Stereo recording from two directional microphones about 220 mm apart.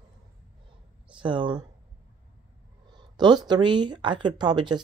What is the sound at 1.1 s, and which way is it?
Speech, 20° right (ahead or behind).